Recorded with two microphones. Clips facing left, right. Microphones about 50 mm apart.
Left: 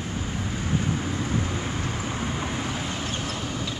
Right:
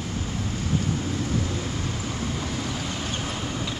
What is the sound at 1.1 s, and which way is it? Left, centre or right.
Vehicle, left.